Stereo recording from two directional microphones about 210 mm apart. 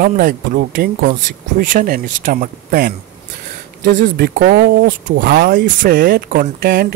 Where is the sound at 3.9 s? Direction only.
45° right (ahead or behind).